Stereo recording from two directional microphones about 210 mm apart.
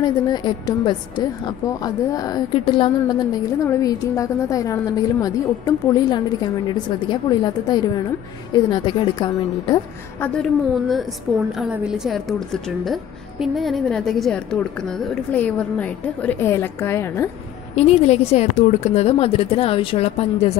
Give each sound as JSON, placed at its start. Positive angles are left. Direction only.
{"t": 0.0, "sound": "a woman's voice", "side_deg": 20}
{"t": 10.2, "sound": "a woman's voice", "side_deg": 5}
{"t": 17.7, "sound": "a woman's voice", "side_deg": 30}